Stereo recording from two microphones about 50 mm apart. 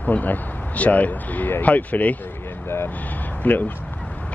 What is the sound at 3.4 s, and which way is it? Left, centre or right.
Speech, left.